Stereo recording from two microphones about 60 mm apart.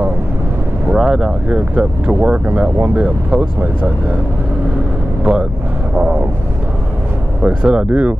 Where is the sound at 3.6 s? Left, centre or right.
Right.